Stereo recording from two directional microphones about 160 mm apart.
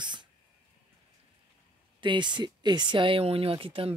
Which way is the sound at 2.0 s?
30° right (ahead or behind).